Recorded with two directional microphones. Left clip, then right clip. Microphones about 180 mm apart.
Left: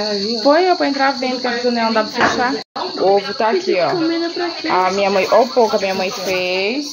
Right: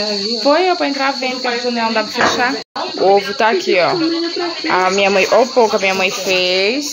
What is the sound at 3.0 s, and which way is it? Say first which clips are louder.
Speech: right 3 dB; 10° right (ahead or behind).